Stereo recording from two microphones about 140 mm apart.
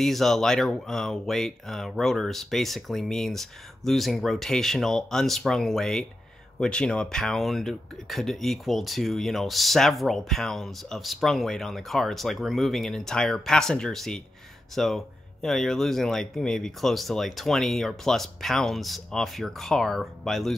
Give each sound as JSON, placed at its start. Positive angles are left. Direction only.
{"t": 0.0, "sound": "speech", "side_deg": 0}